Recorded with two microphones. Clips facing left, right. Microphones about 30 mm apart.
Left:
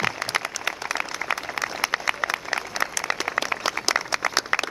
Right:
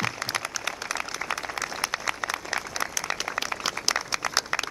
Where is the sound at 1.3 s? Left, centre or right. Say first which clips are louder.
Left 4 dB; left.